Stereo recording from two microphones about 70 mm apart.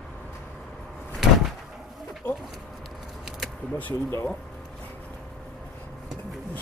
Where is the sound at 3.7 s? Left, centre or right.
Left.